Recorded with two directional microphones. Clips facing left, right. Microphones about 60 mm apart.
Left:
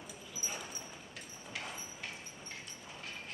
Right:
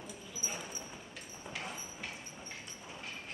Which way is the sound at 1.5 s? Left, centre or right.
Right.